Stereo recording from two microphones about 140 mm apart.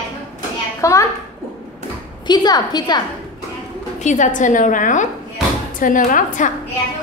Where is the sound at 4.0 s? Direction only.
60° left (ahead or behind).